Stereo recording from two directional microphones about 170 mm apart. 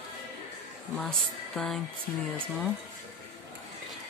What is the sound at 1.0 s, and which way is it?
Speech, 5° left (ahead or behind).